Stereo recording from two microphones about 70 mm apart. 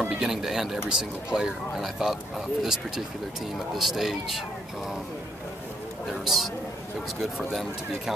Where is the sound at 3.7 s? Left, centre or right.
Centre.